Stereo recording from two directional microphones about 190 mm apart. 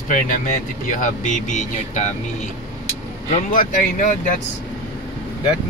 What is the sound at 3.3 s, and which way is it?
Speech, 45° left (ahead or behind).